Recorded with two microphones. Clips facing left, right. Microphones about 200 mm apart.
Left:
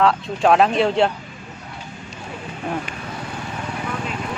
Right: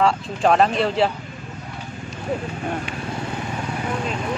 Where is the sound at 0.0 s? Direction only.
Centre (ahead or behind).